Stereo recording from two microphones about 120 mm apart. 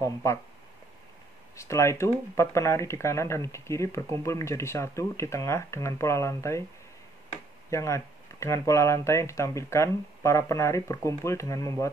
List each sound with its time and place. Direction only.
0.0 s speech: 25° left (ahead or behind)
1.6 s speech: 25° left (ahead or behind)
7.7 s speech: 25° left (ahead or behind)